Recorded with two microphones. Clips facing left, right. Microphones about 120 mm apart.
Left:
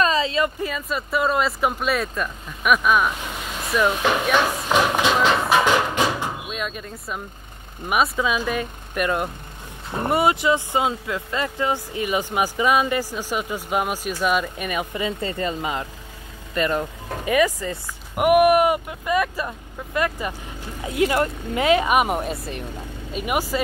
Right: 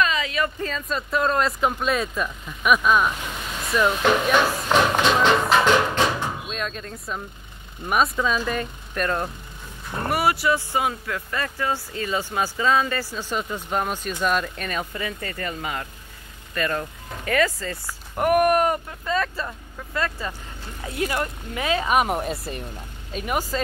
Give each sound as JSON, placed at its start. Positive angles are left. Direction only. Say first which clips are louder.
{"t": 0.0, "sound": "a sound", "louder": "left 3 dB", "side_deg": 30}
{"t": 0.6, "sound": "speech", "louder": "left 1 dB", "side_deg": 10}
{"t": 3.6, "sound": "a sound", "louder": "even", "side_deg": 0}
{"t": 7.9, "sound": "speech", "louder": "left 1 dB", "side_deg": 10}
{"t": 9.8, "sound": "speech", "louder": "left 3 dB", "side_deg": 20}
{"t": 15.0, "sound": "speech", "louder": "left 5 dB", "side_deg": 25}
{"t": 21.8, "sound": "speech", "louder": "left 1 dB", "side_deg": 5}
{"t": 23.1, "sound": "speech", "louder": "left 2 dB", "side_deg": 10}